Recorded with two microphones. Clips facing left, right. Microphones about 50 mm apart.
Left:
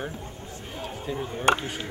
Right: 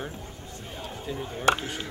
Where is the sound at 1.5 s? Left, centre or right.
Centre.